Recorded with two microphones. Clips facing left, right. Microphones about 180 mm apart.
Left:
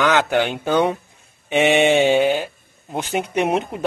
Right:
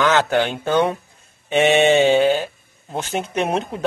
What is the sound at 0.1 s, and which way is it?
Speech, 15° left (ahead or behind).